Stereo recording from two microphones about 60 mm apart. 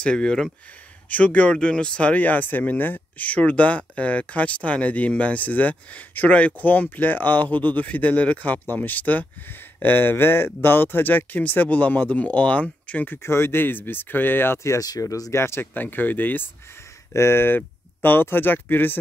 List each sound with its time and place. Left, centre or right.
0.0 s speech: centre
1.1 s speech: left
13.1 s speech: left
14.6 s speech: left
15.3 s speech: left
15.7 s speech: left
17.1 s speech: left